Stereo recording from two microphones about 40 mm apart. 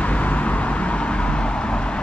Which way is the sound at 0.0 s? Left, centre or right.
Left.